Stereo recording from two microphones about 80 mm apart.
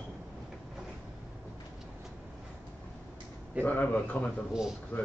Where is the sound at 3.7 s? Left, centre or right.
Left.